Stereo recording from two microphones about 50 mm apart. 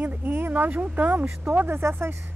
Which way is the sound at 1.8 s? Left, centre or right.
Right.